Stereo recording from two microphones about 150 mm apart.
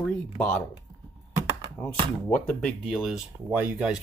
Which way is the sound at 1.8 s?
10° left (ahead or behind).